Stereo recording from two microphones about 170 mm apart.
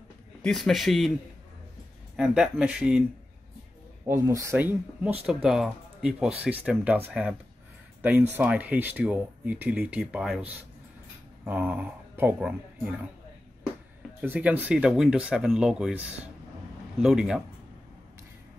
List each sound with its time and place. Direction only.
0.4 s speech: centre (ahead or behind)
2.1 s speech: 5° right (ahead or behind)
4.0 s speech: 15° right (ahead or behind)
14.2 s speech: 10° right (ahead or behind)
17.0 s speech: 5° right (ahead or behind)